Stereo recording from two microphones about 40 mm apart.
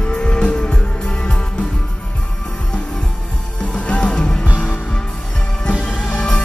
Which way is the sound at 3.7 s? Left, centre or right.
Left.